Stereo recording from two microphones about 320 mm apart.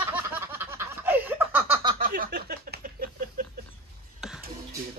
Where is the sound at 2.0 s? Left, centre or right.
Right.